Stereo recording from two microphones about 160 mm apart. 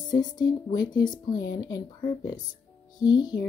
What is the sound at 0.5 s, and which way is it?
Speech, 25° left (ahead or behind).